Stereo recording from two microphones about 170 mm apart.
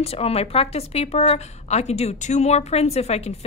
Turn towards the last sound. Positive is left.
turn(degrees=40)  # may be behind; listen again after turning